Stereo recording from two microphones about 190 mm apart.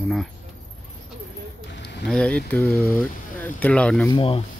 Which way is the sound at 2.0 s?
5° left (ahead or behind).